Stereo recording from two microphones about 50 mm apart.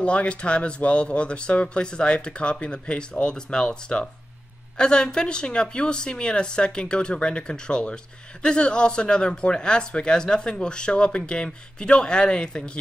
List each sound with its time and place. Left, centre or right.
0.0 s speech: left